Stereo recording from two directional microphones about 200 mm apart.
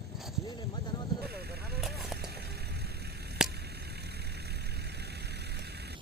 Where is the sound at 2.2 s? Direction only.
55° right (ahead or behind).